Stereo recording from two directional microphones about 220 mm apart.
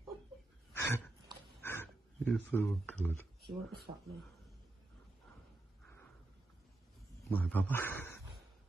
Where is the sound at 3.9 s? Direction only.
25° right (ahead or behind).